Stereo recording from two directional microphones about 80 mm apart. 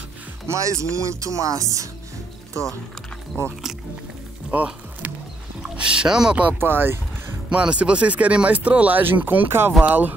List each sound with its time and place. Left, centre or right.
0.5 s speech: right
3.3 s speech: centre
4.5 s music: centre
5.9 s speech: centre
6.6 s speech: right
7.4 s speech: centre